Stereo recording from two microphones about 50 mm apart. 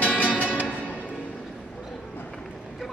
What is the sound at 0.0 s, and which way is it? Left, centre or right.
Music, left.